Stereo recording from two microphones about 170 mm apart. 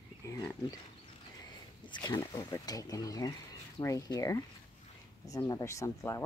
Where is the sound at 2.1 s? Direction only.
20° left (ahead or behind).